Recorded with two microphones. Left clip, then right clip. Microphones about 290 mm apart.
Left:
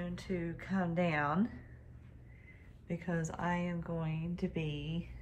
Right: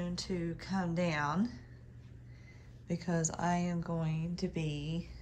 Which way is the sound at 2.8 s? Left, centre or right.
Centre.